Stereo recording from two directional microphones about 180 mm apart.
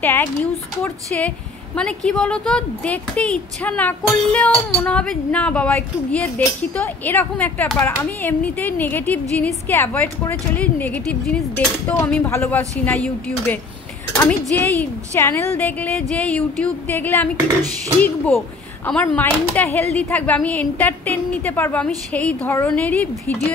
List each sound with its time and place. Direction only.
0.0 s speech: 15° left (ahead or behind)